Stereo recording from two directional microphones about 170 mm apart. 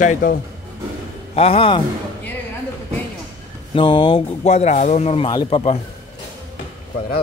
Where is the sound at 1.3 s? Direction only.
35° left (ahead or behind).